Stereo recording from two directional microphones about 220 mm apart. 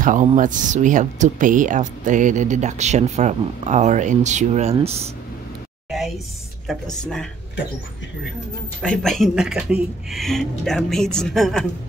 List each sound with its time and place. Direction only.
0.0 s speech: 35° right (ahead or behind)
5.9 s a sound: centre (ahead or behind)
6.7 s speech: centre (ahead or behind)
8.8 s speech: 5° left (ahead or behind)